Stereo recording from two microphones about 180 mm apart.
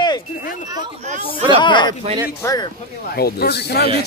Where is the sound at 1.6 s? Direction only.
25° left (ahead or behind).